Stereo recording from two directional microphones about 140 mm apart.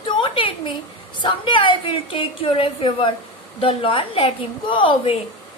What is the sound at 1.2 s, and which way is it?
A woman's voice, 35° left (ahead or behind).